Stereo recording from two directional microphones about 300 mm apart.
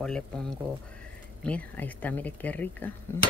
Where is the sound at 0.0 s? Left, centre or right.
Centre.